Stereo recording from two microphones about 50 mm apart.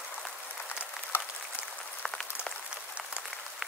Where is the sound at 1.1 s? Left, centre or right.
Left.